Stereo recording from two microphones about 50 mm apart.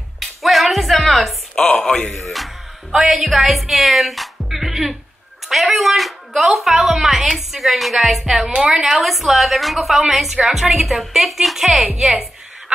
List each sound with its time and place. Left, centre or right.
0.2 s music: centre
1.6 s a man's voice: centre
2.1 s a woman's voice: centre
9.0 s a woman's voice: centre